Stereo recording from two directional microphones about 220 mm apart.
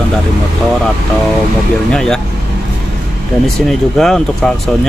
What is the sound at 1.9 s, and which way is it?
Speech, 5° left (ahead or behind).